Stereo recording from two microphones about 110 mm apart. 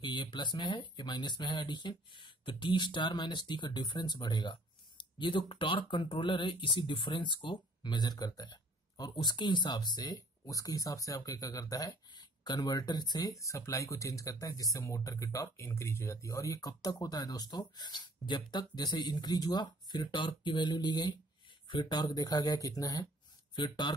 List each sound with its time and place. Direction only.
0.0 s speech: 45° left (ahead or behind)
23.5 s speech: 45° left (ahead or behind)